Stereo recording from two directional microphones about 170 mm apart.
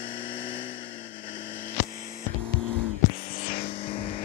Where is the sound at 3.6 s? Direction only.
30° left (ahead or behind).